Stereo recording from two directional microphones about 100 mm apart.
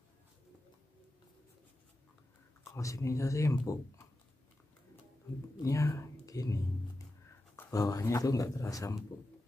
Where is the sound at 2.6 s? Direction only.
30° left (ahead or behind).